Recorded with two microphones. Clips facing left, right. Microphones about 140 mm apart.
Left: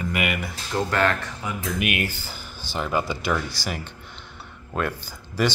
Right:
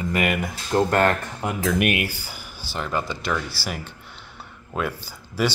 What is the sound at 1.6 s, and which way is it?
Speech, 75° right (ahead or behind).